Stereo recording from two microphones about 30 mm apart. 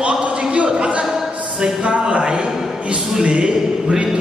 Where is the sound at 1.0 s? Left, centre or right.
Centre.